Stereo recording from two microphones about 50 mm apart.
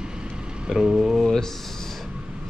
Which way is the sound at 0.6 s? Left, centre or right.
Centre.